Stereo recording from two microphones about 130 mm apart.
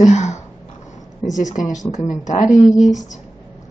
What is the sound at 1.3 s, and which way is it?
Speech, 70° left (ahead or behind).